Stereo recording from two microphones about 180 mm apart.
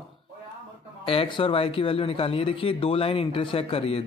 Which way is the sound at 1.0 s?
30° left (ahead or behind).